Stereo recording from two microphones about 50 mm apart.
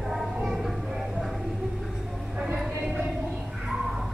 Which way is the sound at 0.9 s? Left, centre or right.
Centre.